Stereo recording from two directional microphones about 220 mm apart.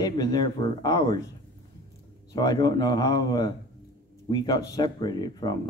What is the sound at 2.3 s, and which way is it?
Speech, 15° left (ahead or behind).